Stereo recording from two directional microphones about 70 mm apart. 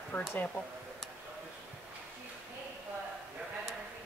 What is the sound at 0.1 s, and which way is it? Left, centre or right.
Speech, left.